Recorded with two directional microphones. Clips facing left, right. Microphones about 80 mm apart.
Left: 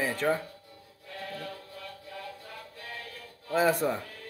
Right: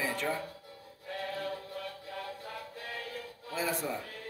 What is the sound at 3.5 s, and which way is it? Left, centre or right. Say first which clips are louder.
Speech: left 9 dB; left.